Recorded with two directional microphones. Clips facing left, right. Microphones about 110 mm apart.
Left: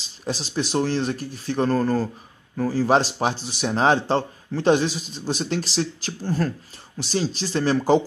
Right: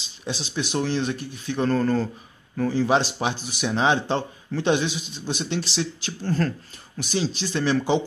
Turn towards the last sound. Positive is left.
turn(degrees=35)  # may be behind; listen again after turning